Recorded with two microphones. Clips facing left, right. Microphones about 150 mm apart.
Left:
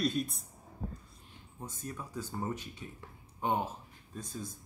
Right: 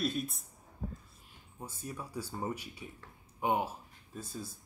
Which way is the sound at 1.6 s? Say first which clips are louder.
Even; 10° right (ahead or behind).